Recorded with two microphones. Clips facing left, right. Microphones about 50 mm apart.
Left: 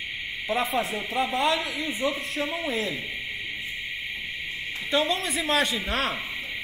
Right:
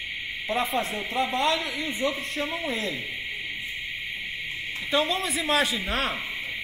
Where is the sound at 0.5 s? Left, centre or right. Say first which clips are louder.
Left 1 dB; centre.